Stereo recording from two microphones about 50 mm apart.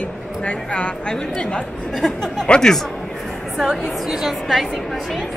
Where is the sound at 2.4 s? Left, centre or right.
Left.